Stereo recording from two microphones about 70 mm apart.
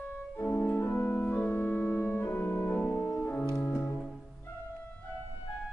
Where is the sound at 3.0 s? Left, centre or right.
Left.